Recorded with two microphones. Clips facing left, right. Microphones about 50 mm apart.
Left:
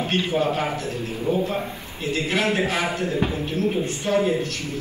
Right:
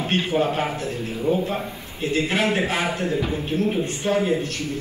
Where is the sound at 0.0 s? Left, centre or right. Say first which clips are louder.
Even; right.